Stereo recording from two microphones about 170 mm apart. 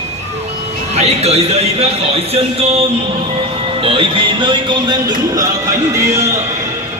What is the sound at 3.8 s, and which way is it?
Music, 30° right (ahead or behind).